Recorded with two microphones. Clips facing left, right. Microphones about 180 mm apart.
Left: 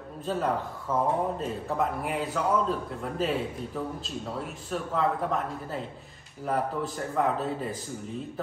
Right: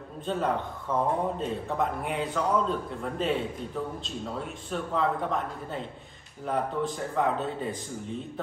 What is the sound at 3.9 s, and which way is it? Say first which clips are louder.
A man's voice: even; 5° left (ahead or behind).